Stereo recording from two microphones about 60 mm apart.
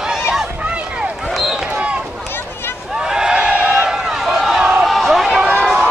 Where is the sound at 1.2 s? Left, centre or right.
Centre.